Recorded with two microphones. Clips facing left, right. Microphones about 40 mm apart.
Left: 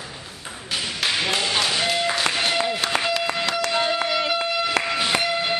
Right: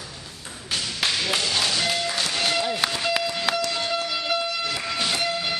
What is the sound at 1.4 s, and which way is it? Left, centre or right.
Music, left.